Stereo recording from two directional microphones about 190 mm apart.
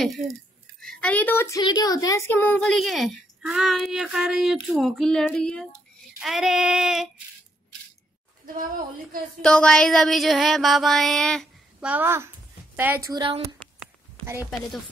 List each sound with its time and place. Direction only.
0.7 s a woman's voice: 5° left (ahead or behind)
9.4 s a woman's voice: 5° left (ahead or behind)
11.9 s a woman's voice: 10° right (ahead or behind)
13.1 s a woman's voice: 25° right (ahead or behind)
14.2 s speech: 15° right (ahead or behind)